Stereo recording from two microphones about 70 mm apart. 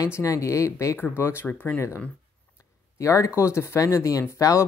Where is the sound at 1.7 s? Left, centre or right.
Left.